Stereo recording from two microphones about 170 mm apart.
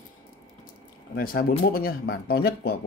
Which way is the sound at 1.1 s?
60° left (ahead or behind).